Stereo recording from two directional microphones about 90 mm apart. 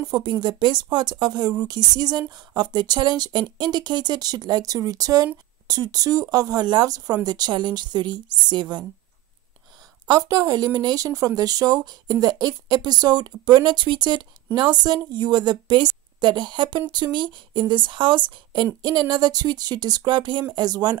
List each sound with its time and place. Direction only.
0.1 s a woman's voice: 55° right (ahead or behind)
10.0 s a woman's voice: 45° right (ahead or behind)